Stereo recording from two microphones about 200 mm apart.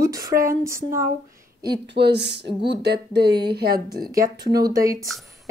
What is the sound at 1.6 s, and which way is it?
Speech, 55° right (ahead or behind).